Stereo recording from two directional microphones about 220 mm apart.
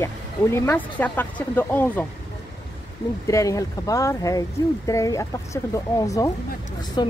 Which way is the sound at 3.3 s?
15° left (ahead or behind).